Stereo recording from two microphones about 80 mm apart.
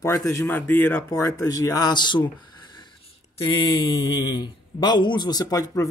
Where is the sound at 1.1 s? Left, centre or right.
Left.